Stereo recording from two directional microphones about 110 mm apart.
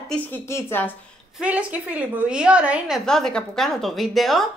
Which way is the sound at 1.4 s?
15° right (ahead or behind).